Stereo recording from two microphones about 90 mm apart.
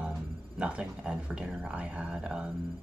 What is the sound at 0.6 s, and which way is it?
Speech, 10° right (ahead or behind).